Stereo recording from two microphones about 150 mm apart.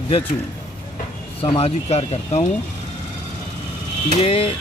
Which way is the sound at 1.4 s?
40° left (ahead or behind).